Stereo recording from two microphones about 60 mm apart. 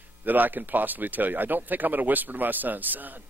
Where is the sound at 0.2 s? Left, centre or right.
Right.